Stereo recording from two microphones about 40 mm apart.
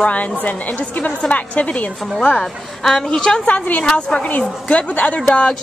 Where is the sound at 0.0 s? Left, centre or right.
Left.